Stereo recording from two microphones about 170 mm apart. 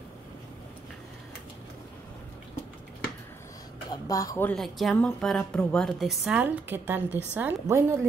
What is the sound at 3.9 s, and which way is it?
Speech, 20° left (ahead or behind).